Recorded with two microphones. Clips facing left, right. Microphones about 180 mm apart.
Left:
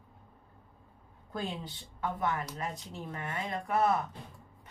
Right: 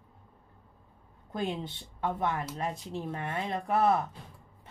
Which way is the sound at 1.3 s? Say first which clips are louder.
Right 4 dB; 25° right (ahead or behind).